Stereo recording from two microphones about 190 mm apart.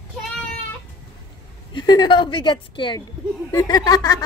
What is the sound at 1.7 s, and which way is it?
A woman's voice, 25° left (ahead or behind).